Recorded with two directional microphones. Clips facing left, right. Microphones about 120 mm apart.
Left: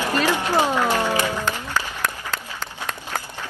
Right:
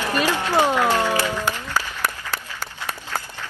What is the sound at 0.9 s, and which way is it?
Music, 15° left (ahead or behind).